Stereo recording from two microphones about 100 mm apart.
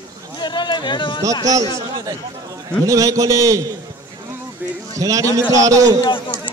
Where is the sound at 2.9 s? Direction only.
35° right (ahead or behind).